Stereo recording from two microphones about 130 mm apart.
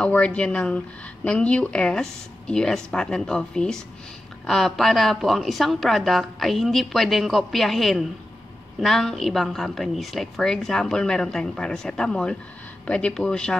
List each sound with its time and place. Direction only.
0.0 s a woman's voice: 10° left (ahead or behind)